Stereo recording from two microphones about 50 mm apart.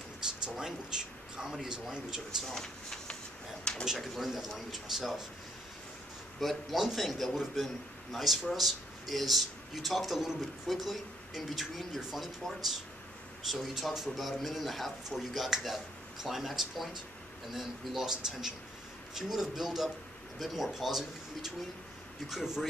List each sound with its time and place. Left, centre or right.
0.6 s a man's voice: centre
2.5 s speech: centre
4.0 s a man's voice: centre
6.4 s a man's voice: centre